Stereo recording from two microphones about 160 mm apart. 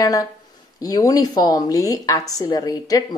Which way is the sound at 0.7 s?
25° left (ahead or behind).